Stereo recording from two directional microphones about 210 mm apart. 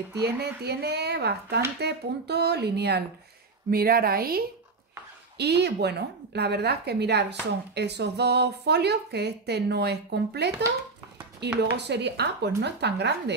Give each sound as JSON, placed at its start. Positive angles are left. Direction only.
{"t": 0.1, "sound": "speech", "side_deg": -50}